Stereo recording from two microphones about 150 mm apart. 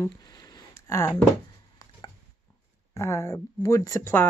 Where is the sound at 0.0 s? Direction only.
25° left (ahead or behind).